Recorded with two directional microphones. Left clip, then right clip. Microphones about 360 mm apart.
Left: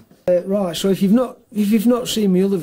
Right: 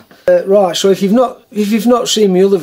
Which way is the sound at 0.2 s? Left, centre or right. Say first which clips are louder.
Right 9 dB; centre.